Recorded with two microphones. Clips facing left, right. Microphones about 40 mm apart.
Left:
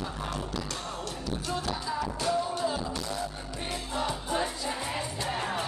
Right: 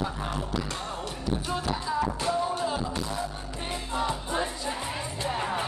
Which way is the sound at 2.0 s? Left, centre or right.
Right.